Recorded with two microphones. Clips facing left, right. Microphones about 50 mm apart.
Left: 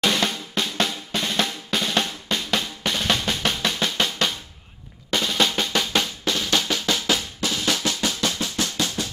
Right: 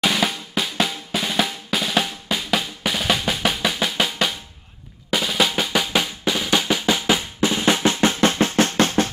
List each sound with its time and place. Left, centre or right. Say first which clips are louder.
0.0 s drum: right 1 dB; centre; by 9.1 s right